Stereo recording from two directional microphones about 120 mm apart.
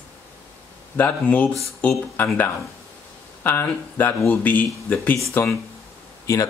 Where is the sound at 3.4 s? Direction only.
15° left (ahead or behind).